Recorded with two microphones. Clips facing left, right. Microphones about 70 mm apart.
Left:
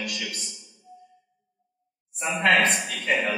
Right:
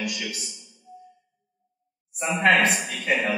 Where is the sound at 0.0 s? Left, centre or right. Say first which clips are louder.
Right 2 dB; centre.